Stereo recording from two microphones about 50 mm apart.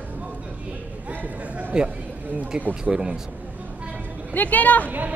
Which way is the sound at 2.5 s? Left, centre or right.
Centre.